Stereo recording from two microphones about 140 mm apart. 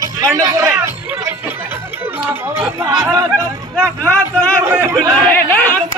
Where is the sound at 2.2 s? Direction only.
15° right (ahead or behind).